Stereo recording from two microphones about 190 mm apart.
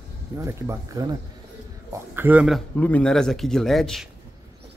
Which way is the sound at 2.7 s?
10° left (ahead or behind).